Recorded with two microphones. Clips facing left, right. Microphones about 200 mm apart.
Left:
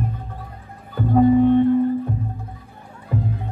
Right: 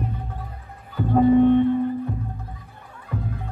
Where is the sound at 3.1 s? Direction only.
30° left (ahead or behind).